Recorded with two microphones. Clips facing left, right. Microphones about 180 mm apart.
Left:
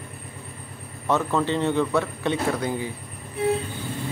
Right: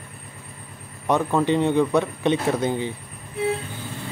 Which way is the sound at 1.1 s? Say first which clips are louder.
Right 3 dB; 15° right (ahead or behind).